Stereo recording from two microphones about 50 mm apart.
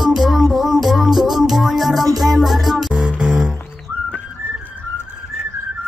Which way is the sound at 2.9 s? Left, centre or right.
Right.